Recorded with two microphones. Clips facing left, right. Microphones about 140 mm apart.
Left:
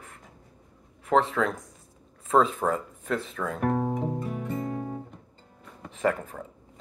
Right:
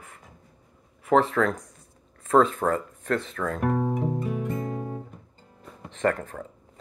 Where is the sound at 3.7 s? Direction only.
25° left (ahead or behind).